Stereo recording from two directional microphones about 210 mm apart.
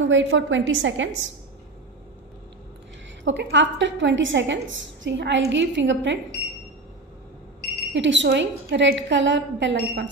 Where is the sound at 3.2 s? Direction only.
60° right (ahead or behind).